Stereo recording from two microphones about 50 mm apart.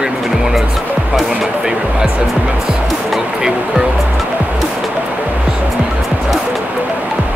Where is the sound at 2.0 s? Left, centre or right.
Right.